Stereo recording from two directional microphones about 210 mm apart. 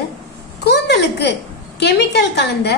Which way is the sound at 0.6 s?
55° left (ahead or behind).